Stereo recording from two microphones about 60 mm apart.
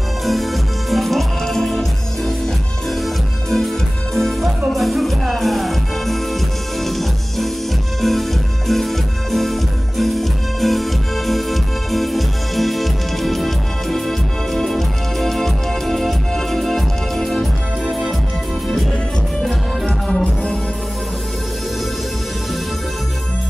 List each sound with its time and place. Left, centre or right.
0.2 s music: centre